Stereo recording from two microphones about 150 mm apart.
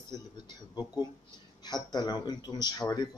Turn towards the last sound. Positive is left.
turn(degrees=25)  # may be behind; listen again after turning